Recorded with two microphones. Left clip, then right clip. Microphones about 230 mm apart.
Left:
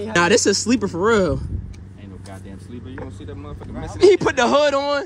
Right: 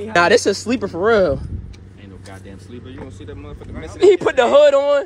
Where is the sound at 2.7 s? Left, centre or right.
Left.